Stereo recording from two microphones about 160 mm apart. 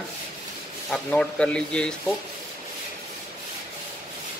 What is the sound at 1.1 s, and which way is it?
Speech, 5° left (ahead or behind).